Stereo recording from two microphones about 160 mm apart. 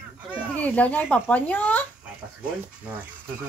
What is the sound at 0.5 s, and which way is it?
Speech, 10° left (ahead or behind).